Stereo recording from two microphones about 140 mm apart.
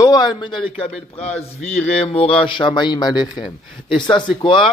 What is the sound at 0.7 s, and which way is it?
Speech, 45° left (ahead or behind).